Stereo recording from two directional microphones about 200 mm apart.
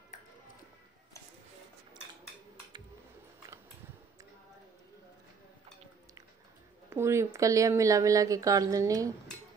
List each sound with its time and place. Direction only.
6.9 s speech: 15° right (ahead or behind)